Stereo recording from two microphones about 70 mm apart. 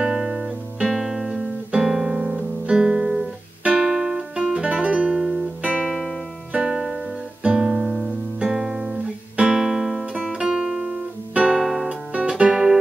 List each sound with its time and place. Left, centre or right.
0.0 s guitar: centre
2.3 s music: centre
7.4 s guitar: centre
10.1 s music: centre
11.6 s music: centre